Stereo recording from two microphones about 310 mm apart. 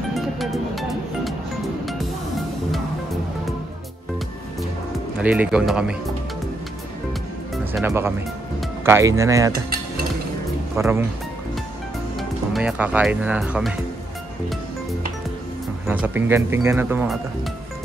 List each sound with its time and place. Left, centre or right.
0.1 s music: centre
5.2 s speech: centre
7.5 s speech: centre
10.8 s speech: centre
12.2 s speech: centre
15.9 s speech: centre